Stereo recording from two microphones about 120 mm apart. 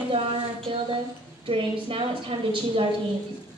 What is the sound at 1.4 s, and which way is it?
A woman's voice, 50° right (ahead or behind).